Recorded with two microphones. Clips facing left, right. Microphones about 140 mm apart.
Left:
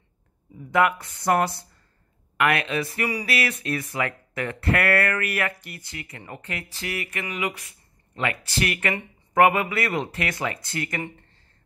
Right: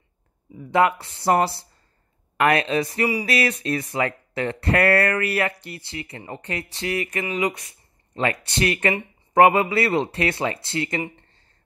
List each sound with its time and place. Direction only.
0.7 s speech: 30° right (ahead or behind)